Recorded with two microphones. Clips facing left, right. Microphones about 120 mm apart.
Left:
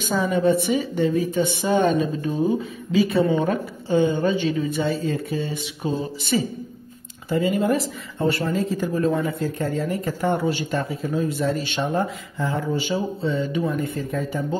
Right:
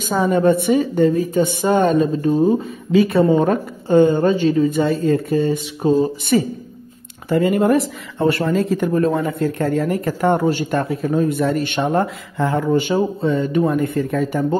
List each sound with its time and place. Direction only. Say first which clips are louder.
0.0 s a woman's voice: right 4 dB; 50° right (ahead or behind)
2.9 s speech: right 5 dB; 55° right (ahead or behind)
3.3 s a woman's voice: right 6 dB; 45° right (ahead or behind)
6.3 s a woman's voice: right 4 dB; 55° right (ahead or behind)